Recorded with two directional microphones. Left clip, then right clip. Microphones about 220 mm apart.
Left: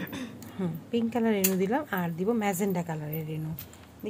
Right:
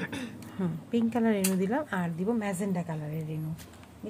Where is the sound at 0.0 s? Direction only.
40° right (ahead or behind).